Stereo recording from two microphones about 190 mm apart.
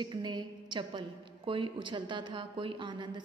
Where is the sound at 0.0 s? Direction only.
25° right (ahead or behind).